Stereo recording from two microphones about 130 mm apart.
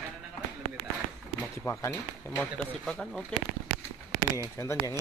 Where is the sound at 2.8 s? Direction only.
5° left (ahead or behind).